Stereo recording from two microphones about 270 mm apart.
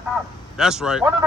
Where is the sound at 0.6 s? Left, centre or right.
Centre.